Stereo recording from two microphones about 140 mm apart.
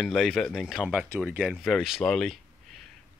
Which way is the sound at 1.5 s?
Centre (ahead or behind).